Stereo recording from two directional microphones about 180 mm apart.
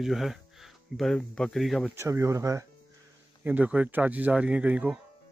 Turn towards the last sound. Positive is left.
turn(degrees=-5)  # may be behind; listen again after turning